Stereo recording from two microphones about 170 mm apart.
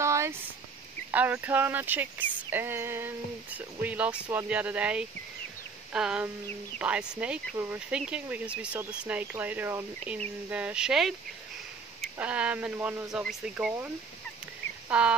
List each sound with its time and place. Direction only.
0.0 s a sound: 15° right (ahead or behind)
1.1 s speech: 10° right (ahead or behind)
14.9 s speech: 5° right (ahead or behind)